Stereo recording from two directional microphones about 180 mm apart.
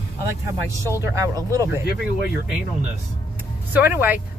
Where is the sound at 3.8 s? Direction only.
10° right (ahead or behind).